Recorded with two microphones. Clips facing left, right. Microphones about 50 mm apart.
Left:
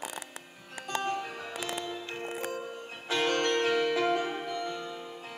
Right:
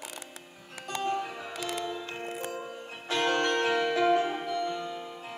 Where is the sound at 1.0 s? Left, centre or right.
Centre.